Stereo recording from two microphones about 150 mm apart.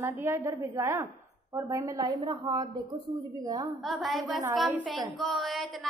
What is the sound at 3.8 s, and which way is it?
A woman's voice, centre (ahead or behind).